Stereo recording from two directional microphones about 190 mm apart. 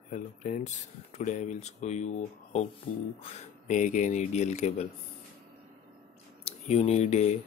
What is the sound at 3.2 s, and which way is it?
Speech, 35° left (ahead or behind).